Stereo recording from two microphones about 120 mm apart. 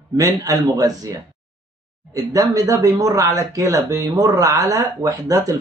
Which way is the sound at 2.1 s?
30° right (ahead or behind).